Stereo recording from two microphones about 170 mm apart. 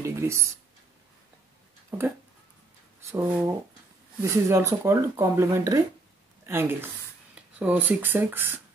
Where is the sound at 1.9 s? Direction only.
10° right (ahead or behind).